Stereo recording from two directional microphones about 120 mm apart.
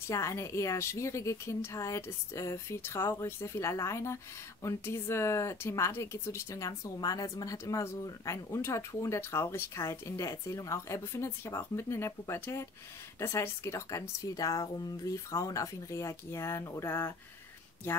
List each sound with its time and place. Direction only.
0.0 s speech: 25° left (ahead or behind)